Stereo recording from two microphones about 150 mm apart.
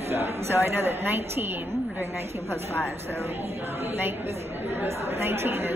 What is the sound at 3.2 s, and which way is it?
A woman's voice, 15° right (ahead or behind).